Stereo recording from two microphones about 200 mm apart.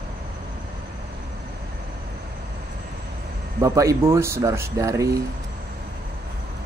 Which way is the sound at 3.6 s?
15° right (ahead or behind).